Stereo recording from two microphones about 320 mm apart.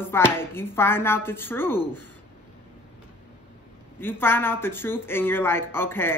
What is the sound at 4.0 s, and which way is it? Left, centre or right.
Speech, centre.